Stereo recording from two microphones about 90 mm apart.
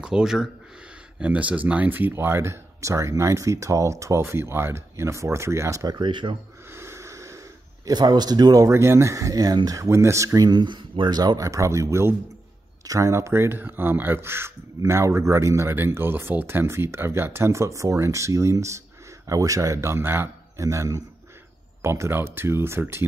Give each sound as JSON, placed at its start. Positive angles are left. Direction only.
{"t": 0.0, "sound": "speech", "side_deg": -5}
{"t": 5.9, "sound": "speech", "side_deg": -60}
{"t": 6.7, "sound": "snort", "side_deg": -30}
{"t": 7.9, "sound": "speech", "side_deg": -50}
{"t": 8.6, "sound": "a man's voice", "side_deg": -30}
{"t": 20.6, "sound": "speech", "side_deg": -35}